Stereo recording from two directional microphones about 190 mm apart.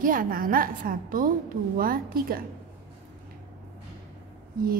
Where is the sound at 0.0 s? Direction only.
45° right (ahead or behind).